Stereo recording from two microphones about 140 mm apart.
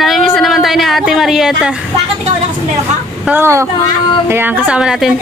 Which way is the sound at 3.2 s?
15° right (ahead or behind).